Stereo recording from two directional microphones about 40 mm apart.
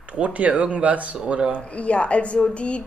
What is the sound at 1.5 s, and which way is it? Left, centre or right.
A woman's voice, left.